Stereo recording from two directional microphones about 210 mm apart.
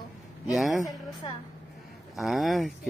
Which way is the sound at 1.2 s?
25° left (ahead or behind).